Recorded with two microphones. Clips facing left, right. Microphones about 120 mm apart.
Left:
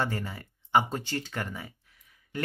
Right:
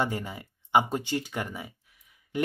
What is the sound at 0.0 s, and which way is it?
Speech, 15° right (ahead or behind).